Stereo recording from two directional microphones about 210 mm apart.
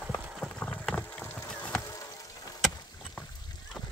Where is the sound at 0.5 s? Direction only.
5° left (ahead or behind).